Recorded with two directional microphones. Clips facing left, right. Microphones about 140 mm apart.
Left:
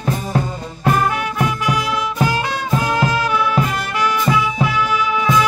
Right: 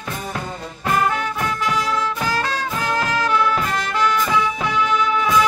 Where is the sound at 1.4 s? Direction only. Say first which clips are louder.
Left 4 dB; 15° left (ahead or behind).